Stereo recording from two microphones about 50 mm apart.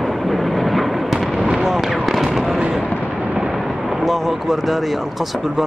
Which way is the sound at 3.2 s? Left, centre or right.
Centre.